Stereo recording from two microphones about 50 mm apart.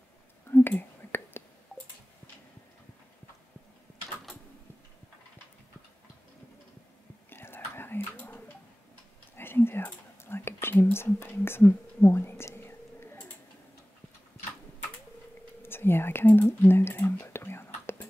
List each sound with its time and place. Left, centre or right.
0.5 s whispering: left
7.2 s whispering: left
10.2 s speech: left
12.5 s whispering: left
15.6 s whispering: left